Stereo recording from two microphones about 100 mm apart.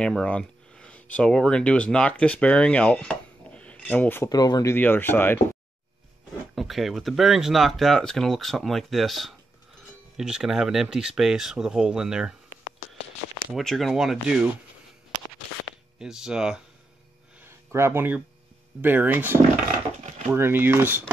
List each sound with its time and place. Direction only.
0.0 s speech: 10° left (ahead or behind)
4.3 s speech: 40° left (ahead or behind)
4.7 s speech: 20° left (ahead or behind)
6.5 s speech: centre (ahead or behind)
13.6 s speech: centre (ahead or behind)
16.0 s speech: 5° right (ahead or behind)
17.4 s a sound: 25° right (ahead or behind)
18.8 s speech: 20° right (ahead or behind)